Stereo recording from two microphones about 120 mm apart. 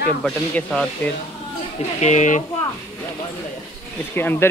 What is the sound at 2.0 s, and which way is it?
Speech, 75° left (ahead or behind).